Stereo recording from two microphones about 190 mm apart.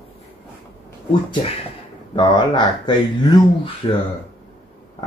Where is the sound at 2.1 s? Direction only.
25° left (ahead or behind).